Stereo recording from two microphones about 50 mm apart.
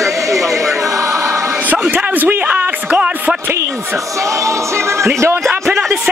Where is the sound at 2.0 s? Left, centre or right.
Right.